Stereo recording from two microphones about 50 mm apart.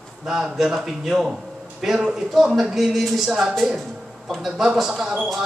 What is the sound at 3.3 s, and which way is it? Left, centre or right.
Speech, centre.